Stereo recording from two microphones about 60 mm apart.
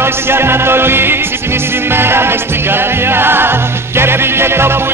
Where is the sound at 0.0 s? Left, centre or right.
Right.